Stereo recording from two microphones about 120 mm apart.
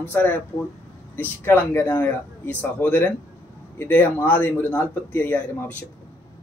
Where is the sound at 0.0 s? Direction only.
15° left (ahead or behind).